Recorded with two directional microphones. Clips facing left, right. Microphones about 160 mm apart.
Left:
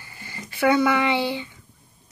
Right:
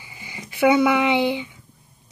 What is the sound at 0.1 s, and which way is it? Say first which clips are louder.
Speech: even; 15° right (ahead or behind).